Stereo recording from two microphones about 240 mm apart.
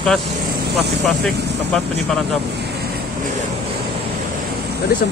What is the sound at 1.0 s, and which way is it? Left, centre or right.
Speech, centre.